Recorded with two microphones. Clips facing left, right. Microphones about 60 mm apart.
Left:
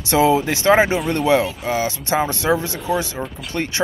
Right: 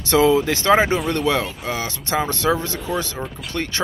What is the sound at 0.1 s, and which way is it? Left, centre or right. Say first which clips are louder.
Speech: even; centre.